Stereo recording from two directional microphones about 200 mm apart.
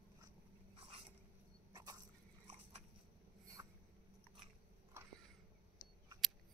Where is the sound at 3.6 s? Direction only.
20° right (ahead or behind).